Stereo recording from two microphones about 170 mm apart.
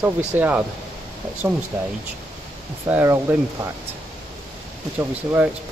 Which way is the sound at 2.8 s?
15° right (ahead or behind).